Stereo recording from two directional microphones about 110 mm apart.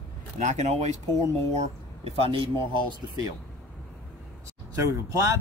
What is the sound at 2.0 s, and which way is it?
Speech, 60° right (ahead or behind).